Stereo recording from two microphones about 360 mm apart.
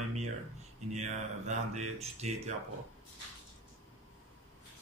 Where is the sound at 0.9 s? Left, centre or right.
Centre.